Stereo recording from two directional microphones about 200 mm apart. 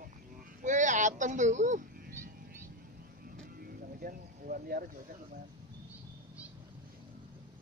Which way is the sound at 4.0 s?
45° right (ahead or behind).